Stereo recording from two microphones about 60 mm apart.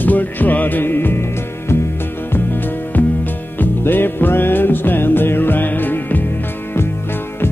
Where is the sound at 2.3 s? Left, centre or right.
Left.